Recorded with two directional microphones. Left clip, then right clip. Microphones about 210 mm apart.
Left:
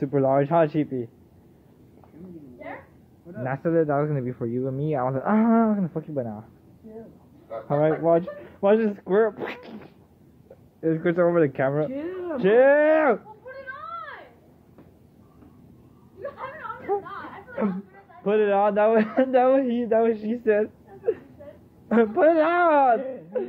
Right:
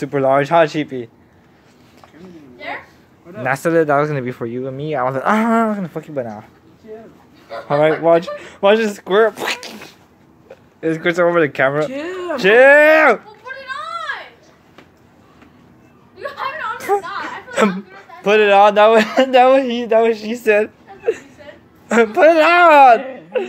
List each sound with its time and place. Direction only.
0.0 s speech: 5° right (ahead or behind)
3.4 s speech: 15° right (ahead or behind)
4.5 s speech: centre (ahead or behind)
7.6 s speech: 15° right (ahead or behind)
12.4 s speech: 10° right (ahead or behind)
16.9 s a sound: 35° right (ahead or behind)
18.2 s speech: 25° right (ahead or behind); by 20.4 s centre (ahead or behind)
20.4 s speech: 10° right (ahead or behind)